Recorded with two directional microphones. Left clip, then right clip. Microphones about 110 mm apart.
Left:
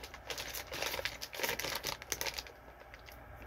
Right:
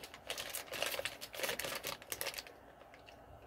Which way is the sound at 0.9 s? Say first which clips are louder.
Left 2 dB; 30° left (ahead or behind).